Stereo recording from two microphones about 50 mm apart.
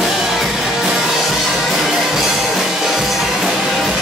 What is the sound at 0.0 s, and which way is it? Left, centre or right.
Music, centre.